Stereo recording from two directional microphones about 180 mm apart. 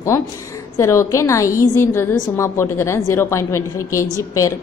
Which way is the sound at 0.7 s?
15° left (ahead or behind).